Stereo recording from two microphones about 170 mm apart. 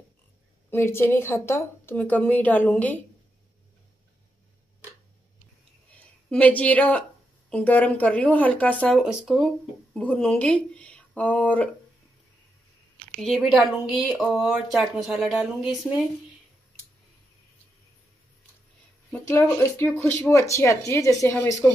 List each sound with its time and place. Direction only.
0.7 s a woman's voice: 15° left (ahead or behind)
6.3 s a woman's voice: 10° left (ahead or behind)
8.9 s speech: centre (ahead or behind)
13.2 s speech: centre (ahead or behind)
19.1 s a woman's voice: 10° left (ahead or behind)